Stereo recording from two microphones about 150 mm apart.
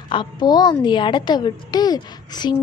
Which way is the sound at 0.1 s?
30° left (ahead or behind).